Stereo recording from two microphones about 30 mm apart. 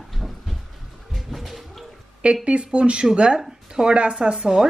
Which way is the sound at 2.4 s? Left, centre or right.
Right.